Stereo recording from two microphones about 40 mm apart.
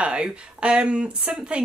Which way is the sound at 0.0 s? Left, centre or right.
Right.